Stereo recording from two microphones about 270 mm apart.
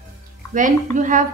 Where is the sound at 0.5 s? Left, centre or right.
Right.